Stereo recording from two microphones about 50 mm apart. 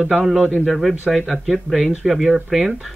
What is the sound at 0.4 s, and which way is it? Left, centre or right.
Speech, left.